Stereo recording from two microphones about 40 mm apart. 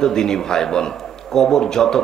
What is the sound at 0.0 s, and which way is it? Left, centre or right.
A man's voice, centre.